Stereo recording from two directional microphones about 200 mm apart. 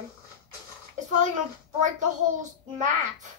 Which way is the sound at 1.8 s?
40° right (ahead or behind).